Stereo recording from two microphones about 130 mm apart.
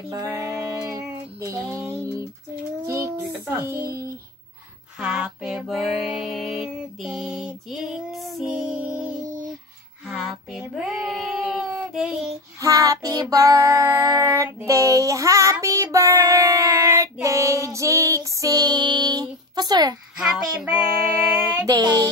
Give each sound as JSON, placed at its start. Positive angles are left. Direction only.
{"t": 0.1, "sound": "female singing", "side_deg": -25}
{"t": 1.7, "sound": "a sound", "side_deg": 0}
{"t": 2.9, "sound": "music", "side_deg": -20}
{"t": 4.9, "sound": "female singing", "side_deg": -5}
{"t": 10.0, "sound": "a sound", "side_deg": 0}
{"t": 10.7, "sound": "child singing", "side_deg": -5}
{"t": 12.5, "sound": "child singing", "side_deg": -25}
{"t": 20.2, "sound": "female singing", "side_deg": -10}
{"t": 21.6, "sound": "music", "side_deg": -30}